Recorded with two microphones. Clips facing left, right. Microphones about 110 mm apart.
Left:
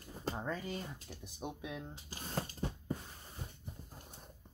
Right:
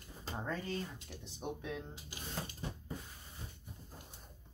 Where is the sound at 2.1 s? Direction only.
40° left (ahead or behind).